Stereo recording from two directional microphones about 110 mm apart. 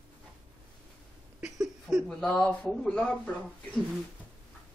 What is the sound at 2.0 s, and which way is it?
Speech, 10° left (ahead or behind).